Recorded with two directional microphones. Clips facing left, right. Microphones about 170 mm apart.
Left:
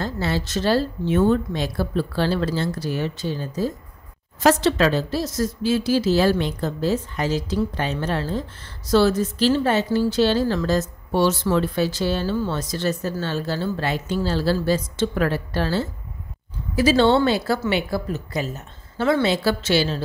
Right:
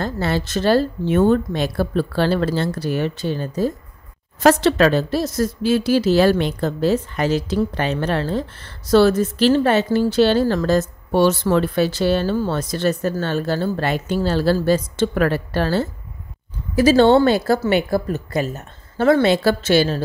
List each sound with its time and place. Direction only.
0.0 s a woman's voice: 55° right (ahead or behind)